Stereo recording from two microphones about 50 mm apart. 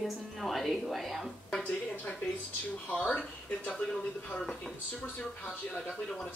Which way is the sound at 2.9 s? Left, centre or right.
Left.